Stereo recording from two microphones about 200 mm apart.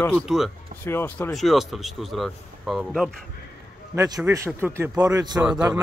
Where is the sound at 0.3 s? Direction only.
5° right (ahead or behind).